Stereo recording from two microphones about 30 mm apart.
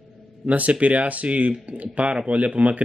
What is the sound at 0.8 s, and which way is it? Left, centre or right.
Speech, right.